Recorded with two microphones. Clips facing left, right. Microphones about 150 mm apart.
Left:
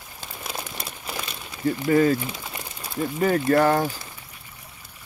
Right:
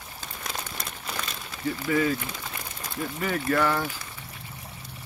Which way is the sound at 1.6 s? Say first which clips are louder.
Left 6 dB; 40° left (ahead or behind).